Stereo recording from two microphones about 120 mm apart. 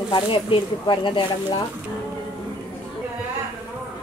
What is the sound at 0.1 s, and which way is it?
Speech, 40° left (ahead or behind).